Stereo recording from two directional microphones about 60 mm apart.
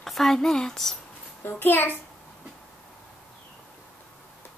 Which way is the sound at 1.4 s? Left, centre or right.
Left.